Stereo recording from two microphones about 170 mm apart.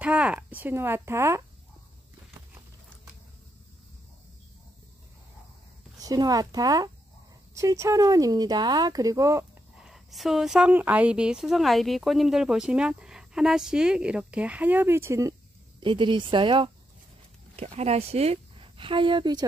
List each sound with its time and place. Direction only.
0.0 s speech: 5° right (ahead or behind)
5.9 s speech: 20° right (ahead or behind)
9.8 s speech: centre (ahead or behind); by 15.3 s 15° right (ahead or behind)
15.8 s speech: 30° right (ahead or behind)